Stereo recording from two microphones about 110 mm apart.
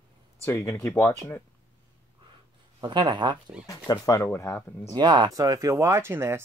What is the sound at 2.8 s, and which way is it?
Speech, 45° right (ahead or behind).